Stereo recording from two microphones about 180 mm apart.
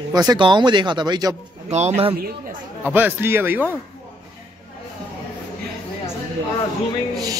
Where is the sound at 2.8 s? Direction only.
10° right (ahead or behind).